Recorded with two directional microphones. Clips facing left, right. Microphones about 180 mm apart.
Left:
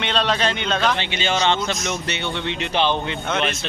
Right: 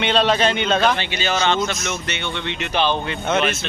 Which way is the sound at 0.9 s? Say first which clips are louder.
Even; 25° left (ahead or behind).